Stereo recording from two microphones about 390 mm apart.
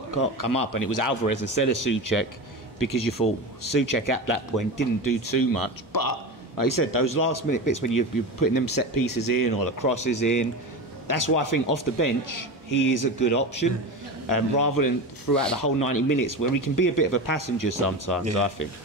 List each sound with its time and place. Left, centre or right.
0.1 s speech: left